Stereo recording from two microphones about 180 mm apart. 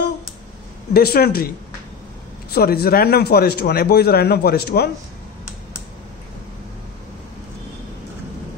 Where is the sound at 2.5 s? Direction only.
60° left (ahead or behind).